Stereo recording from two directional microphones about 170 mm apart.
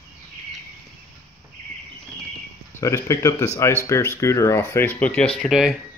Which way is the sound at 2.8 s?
20° left (ahead or behind).